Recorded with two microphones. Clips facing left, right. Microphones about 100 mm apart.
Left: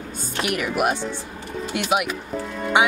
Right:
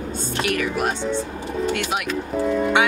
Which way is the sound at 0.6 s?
15° left (ahead or behind).